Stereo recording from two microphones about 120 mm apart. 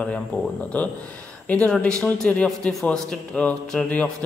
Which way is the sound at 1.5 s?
10° left (ahead or behind).